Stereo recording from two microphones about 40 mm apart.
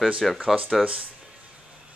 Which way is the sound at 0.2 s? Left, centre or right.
Centre.